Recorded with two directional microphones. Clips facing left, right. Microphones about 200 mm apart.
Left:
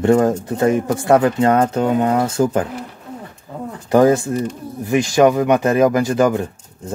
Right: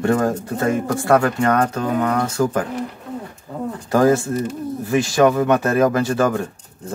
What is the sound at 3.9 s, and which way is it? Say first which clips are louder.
Speech: left 3 dB; 20° left (ahead or behind).